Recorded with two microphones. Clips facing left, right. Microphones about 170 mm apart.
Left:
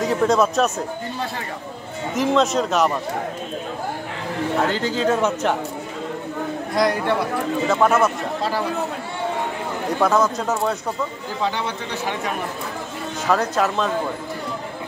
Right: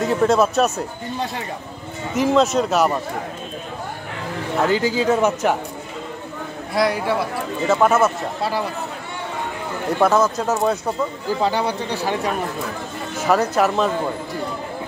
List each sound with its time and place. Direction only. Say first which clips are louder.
0.0 s speech: right 1 dB; 5° right (ahead or behind)
2.1 s speech: right 2 dB; centre (ahead or behind)
4.6 s a man's voice: right 2 dB; 5° right (ahead or behind)
6.7 s a man's voice: right 1 dB; 5° right (ahead or behind)
9.9 s speech: right 2 dB; 5° right (ahead or behind)
11.4 s speech: right 3 dB; 35° right (ahead or behind)
13.3 s a man's voice: right 3 dB; 10° right (ahead or behind)